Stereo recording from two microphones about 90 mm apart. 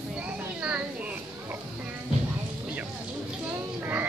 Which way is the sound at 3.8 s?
20° right (ahead or behind).